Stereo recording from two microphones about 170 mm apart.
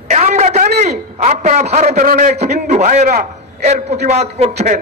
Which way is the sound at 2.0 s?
60° right (ahead or behind).